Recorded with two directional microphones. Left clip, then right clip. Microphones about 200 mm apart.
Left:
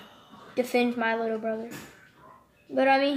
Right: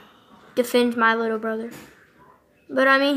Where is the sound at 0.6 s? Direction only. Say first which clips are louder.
Right 6 dB; 55° right (ahead or behind).